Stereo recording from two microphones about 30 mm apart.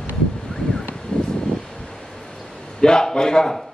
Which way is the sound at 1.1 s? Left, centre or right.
Left.